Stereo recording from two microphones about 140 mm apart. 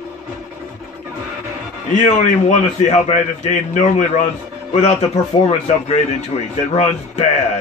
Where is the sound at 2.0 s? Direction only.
55° left (ahead or behind).